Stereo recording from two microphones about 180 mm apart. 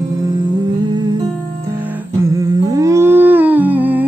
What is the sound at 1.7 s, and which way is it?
Humming, 10° right (ahead or behind).